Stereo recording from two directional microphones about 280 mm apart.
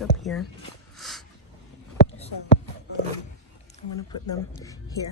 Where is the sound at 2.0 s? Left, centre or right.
Left.